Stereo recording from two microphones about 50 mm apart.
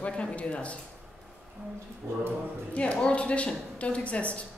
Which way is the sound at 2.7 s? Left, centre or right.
Left.